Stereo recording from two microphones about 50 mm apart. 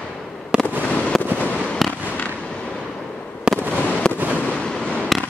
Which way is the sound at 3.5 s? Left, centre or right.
Right.